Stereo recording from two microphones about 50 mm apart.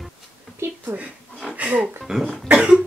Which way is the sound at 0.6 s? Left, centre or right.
Right.